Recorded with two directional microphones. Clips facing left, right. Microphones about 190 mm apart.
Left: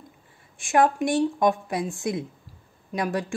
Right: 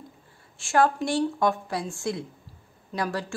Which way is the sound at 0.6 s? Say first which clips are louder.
Left 2 dB; 15° left (ahead or behind).